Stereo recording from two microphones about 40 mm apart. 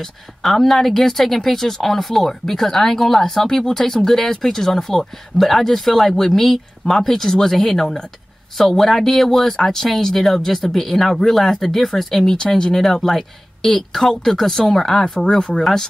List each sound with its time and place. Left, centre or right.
0.0 s speech: centre
12.4 s speech: centre
15.0 s speech: left
15.3 s speech: centre